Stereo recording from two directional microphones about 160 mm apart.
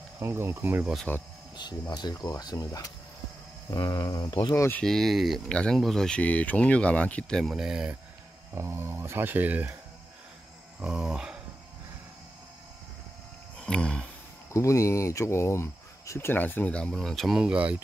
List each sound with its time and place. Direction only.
0.2 s speech: 15° right (ahead or behind)
0.9 s speech: 10° left (ahead or behind)
1.6 s speech: 25° left (ahead or behind)
4.6 s speech: 15° left (ahead or behind)
4.8 s speech: centre (ahead or behind)
8.5 s speech: 15° right (ahead or behind)
10.8 s speech: 5° right (ahead or behind)
13.6 s a sound: 5° left (ahead or behind)
14.5 s speech: 20° left (ahead or behind); by 17.8 s 10° right (ahead or behind)